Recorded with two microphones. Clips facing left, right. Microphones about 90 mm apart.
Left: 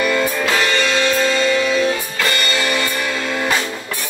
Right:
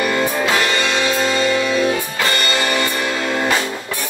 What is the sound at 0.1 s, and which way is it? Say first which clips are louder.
Music: even; 20° right (ahead or behind).